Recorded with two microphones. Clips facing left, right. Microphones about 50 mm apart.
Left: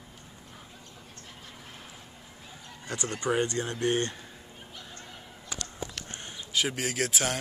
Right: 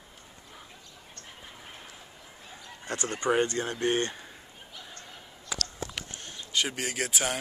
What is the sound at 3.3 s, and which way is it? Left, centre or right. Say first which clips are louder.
Speech: right 2 dB; right.